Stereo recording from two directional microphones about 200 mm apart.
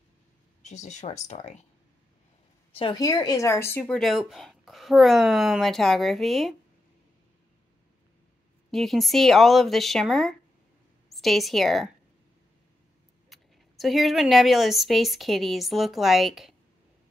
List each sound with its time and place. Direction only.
0.6 s speech: 35° left (ahead or behind)
2.7 s a woman's voice: 25° left (ahead or behind); by 6.5 s centre (ahead or behind)
8.7 s a woman's voice: centre (ahead or behind)
13.3 s a woman's voice: centre (ahead or behind)